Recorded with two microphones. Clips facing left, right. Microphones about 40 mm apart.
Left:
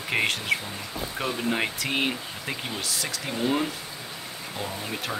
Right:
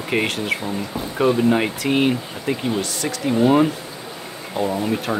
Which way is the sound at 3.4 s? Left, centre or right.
Centre.